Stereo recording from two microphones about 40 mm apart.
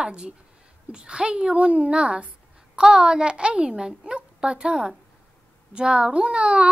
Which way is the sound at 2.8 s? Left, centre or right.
Centre.